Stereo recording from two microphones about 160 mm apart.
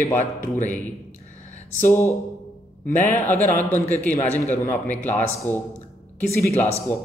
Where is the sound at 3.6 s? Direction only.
10° left (ahead or behind).